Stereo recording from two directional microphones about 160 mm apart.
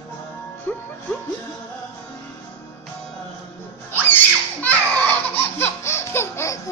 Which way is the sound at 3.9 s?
10° left (ahead or behind).